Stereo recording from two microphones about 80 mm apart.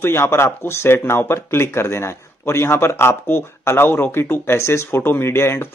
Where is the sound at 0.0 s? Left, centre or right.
Left.